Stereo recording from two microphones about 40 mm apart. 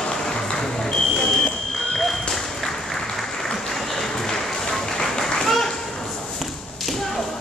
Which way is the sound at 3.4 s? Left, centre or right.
Centre.